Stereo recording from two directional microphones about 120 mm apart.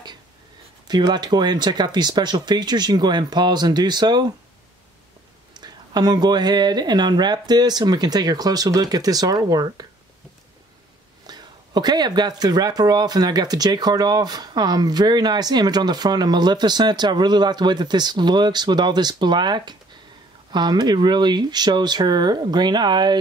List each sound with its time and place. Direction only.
0.8 s speech: 35° right (ahead or behind)
5.5 s speech: 35° right (ahead or behind)
11.2 s speech: 35° right (ahead or behind)